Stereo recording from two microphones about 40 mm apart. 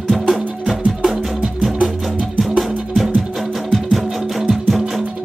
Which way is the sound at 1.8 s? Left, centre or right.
Right.